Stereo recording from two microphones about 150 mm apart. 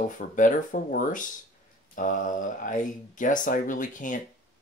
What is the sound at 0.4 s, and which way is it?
Speech, 60° left (ahead or behind).